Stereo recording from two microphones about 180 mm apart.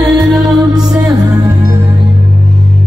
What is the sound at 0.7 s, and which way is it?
Music, 20° right (ahead or behind).